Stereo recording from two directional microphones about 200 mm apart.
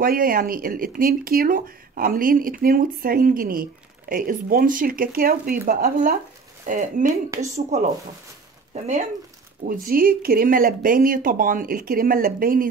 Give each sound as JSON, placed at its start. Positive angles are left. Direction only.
{"t": 0.0, "sound": "speech", "side_deg": -45}
{"t": 9.7, "sound": "speech", "side_deg": -45}